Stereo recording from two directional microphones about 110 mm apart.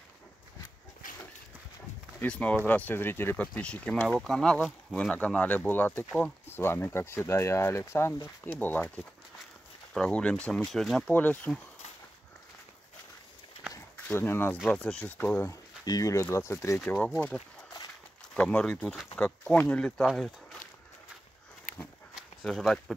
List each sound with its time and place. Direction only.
2.1 s speech: 10° left (ahead or behind)
11.1 s speech: 15° left (ahead or behind)
13.9 s speech: 20° left (ahead or behind)
15.8 s speech: 35° left (ahead or behind)
16.9 s speech: 10° left (ahead or behind)
20.1 s speech: 5° right (ahead or behind)
22.4 s speech: centre (ahead or behind)